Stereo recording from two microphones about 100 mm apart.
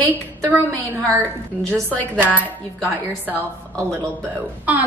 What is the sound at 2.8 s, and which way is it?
Speech, 20° right (ahead or behind).